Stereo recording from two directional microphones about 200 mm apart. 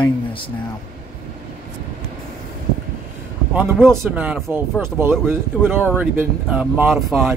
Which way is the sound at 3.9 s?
5° right (ahead or behind).